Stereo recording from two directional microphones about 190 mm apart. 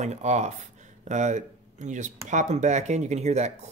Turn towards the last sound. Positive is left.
turn(degrees=-35)  # may be behind; listen again after turning